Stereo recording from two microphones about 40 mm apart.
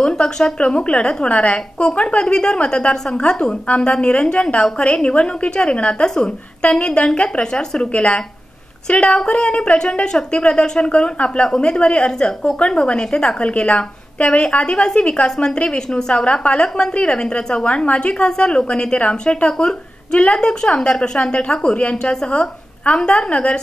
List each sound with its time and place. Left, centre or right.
0.0 s a woman's voice: left
3.6 s a woman's voice: left
6.0 s a woman's voice: centre
11.4 s a woman's voice: centre